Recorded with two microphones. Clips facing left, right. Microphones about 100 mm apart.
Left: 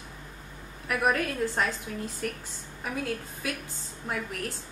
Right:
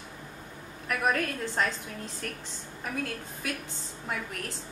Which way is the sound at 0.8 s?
5° left (ahead or behind).